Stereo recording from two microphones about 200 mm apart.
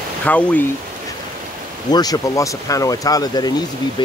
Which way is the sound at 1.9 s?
20° left (ahead or behind).